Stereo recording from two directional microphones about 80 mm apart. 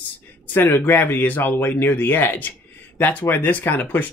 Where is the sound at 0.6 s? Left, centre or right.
Left.